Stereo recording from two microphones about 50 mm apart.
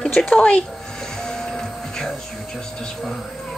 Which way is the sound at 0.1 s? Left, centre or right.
Left.